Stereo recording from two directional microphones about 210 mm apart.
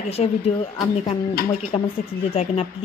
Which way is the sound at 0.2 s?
30° left (ahead or behind).